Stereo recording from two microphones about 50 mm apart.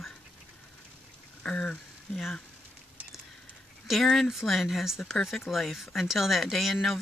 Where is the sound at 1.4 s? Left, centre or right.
Centre.